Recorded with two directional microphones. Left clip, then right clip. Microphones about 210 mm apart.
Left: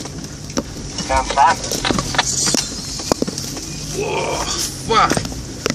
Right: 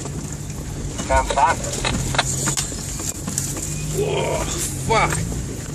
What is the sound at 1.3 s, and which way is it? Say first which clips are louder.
Music: left 4 dB; 10° left (ahead or behind).